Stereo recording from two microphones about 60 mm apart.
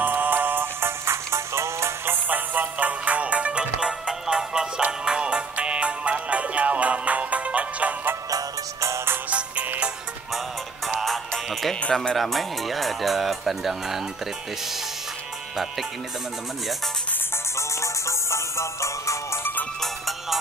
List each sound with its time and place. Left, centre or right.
0.0 s music: right
2.2 s music: right
8.3 s music: right
8.9 s music: right
11.9 s speech: centre
12.2 s speech: centre
17.6 s music: left
19.8 s music: centre